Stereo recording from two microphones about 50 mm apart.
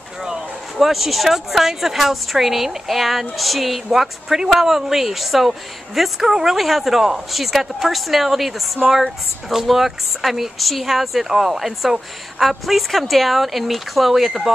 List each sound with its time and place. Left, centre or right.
0.7 s speech: centre